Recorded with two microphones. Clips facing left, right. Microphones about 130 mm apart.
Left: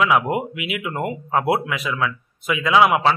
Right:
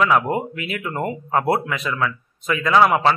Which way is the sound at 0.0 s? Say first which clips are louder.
Even; 5° left (ahead or behind).